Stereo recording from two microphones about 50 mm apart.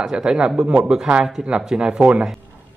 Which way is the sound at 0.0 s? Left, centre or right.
Centre.